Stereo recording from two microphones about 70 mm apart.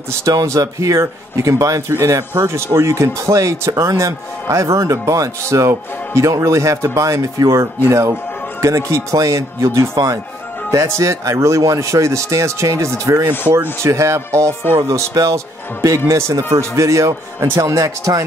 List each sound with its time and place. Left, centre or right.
0.2 s speech: right
0.5 s speech: right